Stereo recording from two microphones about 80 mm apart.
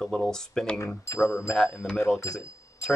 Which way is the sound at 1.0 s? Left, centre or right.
Left.